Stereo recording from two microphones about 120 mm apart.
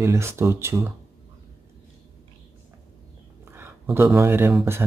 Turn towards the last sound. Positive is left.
turn(degrees=-20)  # may be behind; listen again after turning